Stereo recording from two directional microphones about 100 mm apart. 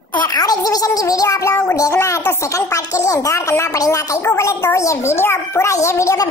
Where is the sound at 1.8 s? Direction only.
30° left (ahead or behind).